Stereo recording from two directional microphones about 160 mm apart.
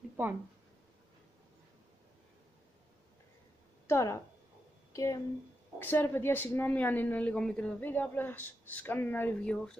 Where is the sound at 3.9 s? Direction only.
15° left (ahead or behind).